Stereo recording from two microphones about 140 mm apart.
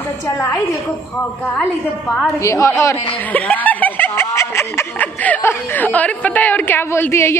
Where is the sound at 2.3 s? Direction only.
20° left (ahead or behind).